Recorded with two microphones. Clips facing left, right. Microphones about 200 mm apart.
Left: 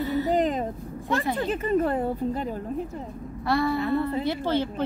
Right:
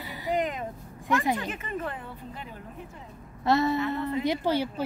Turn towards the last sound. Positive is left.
turn(degrees=-10)  # may be behind; listen again after turning